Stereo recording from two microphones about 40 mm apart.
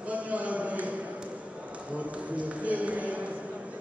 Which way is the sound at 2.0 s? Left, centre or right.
Right.